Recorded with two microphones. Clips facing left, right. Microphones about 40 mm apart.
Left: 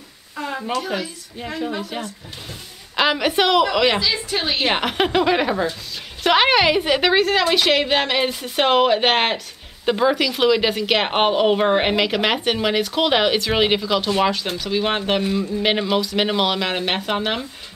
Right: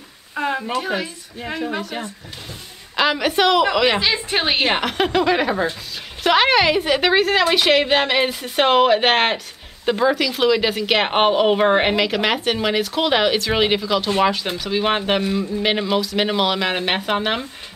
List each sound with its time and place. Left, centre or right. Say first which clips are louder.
0.4 s a woman's voice: right 3 dB; right
3.0 s speech: right 1 dB; centre
4.0 s a woman's voice: right 2 dB; right
4.6 s speech: even; centre